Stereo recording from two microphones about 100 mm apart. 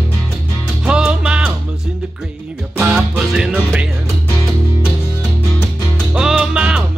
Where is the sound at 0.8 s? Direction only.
10° right (ahead or behind).